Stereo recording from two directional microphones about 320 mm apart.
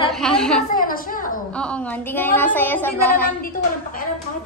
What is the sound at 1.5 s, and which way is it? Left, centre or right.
Speech, centre.